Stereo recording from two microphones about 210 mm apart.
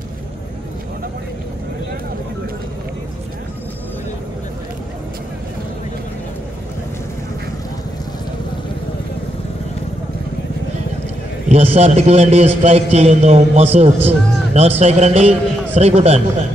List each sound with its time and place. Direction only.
11.4 s a man's voice: 30° right (ahead or behind)